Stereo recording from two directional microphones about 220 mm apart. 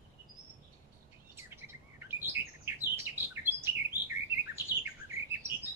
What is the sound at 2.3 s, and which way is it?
Bird, 10° right (ahead or behind).